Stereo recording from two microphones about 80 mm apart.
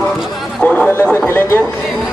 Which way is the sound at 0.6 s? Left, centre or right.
Centre.